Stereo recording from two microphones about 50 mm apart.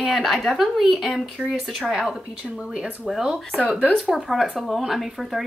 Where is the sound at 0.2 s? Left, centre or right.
Centre.